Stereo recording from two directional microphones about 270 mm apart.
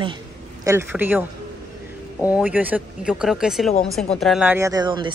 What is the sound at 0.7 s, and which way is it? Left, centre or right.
Speech, centre.